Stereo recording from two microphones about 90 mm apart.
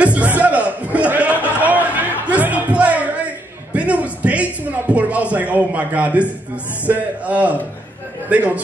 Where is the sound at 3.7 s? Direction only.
15° right (ahead or behind).